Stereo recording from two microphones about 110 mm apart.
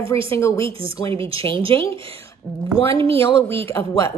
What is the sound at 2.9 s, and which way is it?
Speech, 55° right (ahead or behind).